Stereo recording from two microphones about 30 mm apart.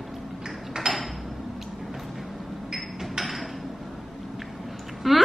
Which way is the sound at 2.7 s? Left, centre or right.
Centre.